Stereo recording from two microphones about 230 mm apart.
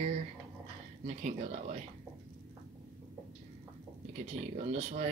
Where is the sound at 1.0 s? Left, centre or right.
Right.